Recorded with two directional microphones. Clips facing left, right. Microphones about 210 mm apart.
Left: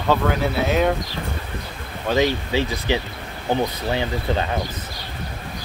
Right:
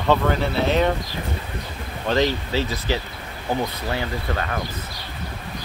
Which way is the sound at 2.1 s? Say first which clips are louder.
Left 1 dB; 15° left (ahead or behind).